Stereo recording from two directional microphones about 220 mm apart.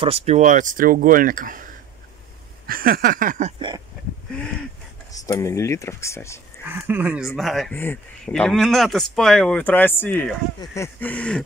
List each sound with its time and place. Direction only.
0.0 s speech: 30° right (ahead or behind)
5.2 s speech: 15° left (ahead or behind)
6.6 s speech: 10° right (ahead or behind)